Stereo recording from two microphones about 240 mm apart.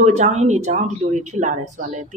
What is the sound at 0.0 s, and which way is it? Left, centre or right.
A woman's voice, right.